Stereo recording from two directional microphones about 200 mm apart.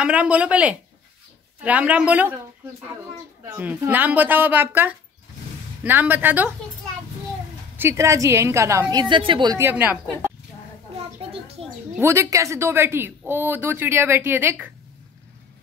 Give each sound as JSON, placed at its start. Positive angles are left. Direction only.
{"t": 0.0, "sound": "speech", "side_deg": -5}
{"t": 3.4, "sound": "speech", "side_deg": -10}
{"t": 7.7, "sound": "speech", "side_deg": -10}
{"t": 11.6, "sound": "a woman's voice", "side_deg": -30}
{"t": 12.0, "sound": "speech", "side_deg": -15}